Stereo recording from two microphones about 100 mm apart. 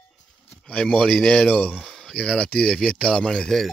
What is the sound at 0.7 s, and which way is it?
A man's voice, 10° left (ahead or behind).